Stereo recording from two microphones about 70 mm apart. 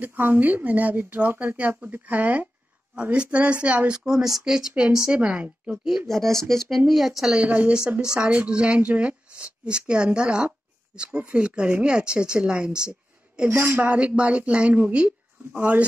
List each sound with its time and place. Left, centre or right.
0.0 s speech: right
6.0 s speech: centre
7.3 s speech: right
13.4 s speech: right